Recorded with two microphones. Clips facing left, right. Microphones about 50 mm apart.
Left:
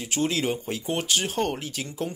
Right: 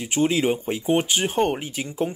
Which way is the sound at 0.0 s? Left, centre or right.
Centre.